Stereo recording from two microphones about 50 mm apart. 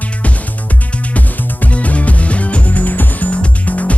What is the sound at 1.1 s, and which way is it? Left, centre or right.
Music, left.